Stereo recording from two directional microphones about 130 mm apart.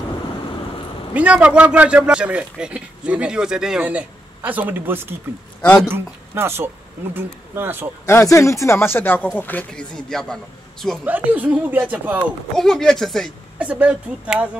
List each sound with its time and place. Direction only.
1.1 s speech: 10° right (ahead or behind)
8.0 s a man's voice: 20° left (ahead or behind); by 11.0 s 5° left (ahead or behind)
11.1 s speech: 10° right (ahead or behind)
12.5 s a man's voice: 5° left (ahead or behind)
13.6 s speech: 10° right (ahead or behind)